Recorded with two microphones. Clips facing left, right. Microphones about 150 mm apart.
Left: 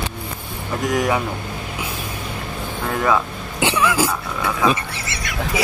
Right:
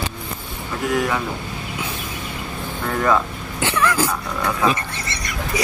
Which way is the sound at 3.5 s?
15° left (ahead or behind).